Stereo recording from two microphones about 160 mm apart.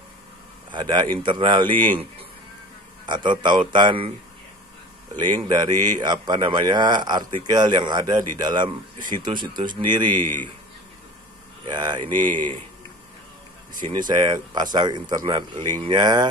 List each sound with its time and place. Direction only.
0.7 s speech: 30° right (ahead or behind)
3.1 s speech: 30° right (ahead or behind)
5.5 s speech: 25° right (ahead or behind)
11.6 s speech: 25° right (ahead or behind)
12.1 s speech: 10° left (ahead or behind)
13.8 s speech: 25° right (ahead or behind)